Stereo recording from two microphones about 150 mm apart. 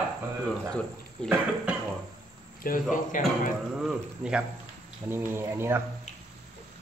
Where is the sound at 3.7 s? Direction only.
5° right (ahead or behind).